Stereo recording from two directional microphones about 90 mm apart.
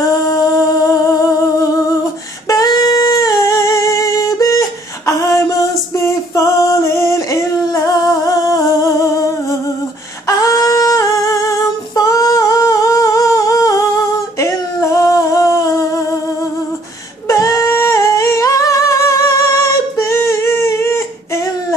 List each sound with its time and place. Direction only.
0.3 s humming: 40° left (ahead or behind)
2.4 s humming: 40° left (ahead or behind)
17.3 s humming: 35° left (ahead or behind)